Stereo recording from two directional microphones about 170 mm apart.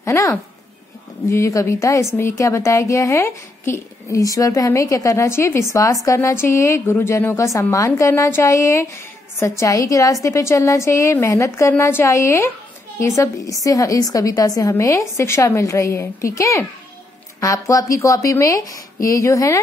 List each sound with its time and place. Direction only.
0.0 s a woman's voice: 20° left (ahead or behind)